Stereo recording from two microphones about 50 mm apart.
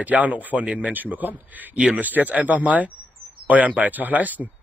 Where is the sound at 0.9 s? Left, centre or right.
Right.